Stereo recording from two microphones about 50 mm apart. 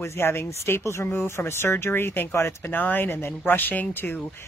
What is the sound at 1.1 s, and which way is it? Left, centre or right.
Speech, left.